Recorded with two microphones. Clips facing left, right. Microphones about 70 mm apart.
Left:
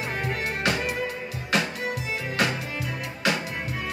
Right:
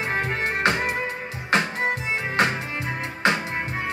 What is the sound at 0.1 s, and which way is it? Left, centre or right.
Music, right.